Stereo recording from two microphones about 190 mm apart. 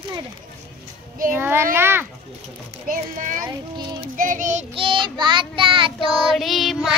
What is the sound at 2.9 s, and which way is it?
A child's voice, 45° right (ahead or behind).